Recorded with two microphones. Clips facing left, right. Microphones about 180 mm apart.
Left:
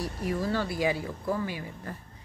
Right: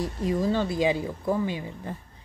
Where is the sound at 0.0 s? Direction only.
20° right (ahead or behind).